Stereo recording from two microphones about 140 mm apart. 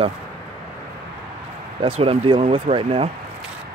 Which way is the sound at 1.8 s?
45° right (ahead or behind).